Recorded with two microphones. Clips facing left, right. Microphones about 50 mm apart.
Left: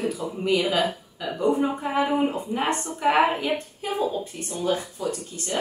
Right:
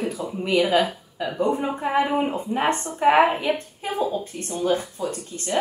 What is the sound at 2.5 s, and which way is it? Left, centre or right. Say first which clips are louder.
Speech: right 3 dB; right.